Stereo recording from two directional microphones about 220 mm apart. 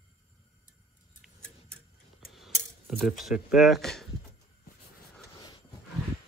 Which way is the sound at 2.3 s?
Centre (ahead or behind).